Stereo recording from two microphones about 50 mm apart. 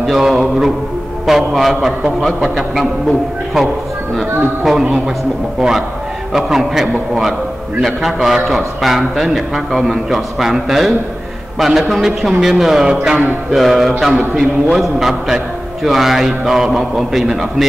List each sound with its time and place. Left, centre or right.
0.0 s mantra: centre
4.2 s a man's voice: centre
7.8 s mantra: centre
12.3 s a man's voice: centre
12.9 s a man's voice: centre
13.6 s mantra: centre